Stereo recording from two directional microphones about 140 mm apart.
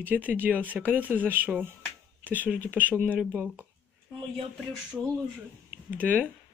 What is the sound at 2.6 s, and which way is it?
Speech, 15° right (ahead or behind).